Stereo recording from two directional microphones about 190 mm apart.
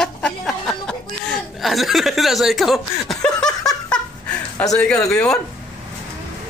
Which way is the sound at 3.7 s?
5° left (ahead or behind).